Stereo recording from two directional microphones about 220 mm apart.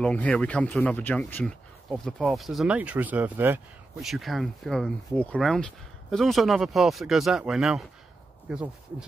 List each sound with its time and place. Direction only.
0.0 s speech: 5° left (ahead or behind)